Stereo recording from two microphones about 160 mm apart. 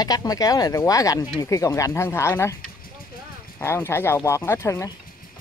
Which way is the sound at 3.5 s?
15° left (ahead or behind).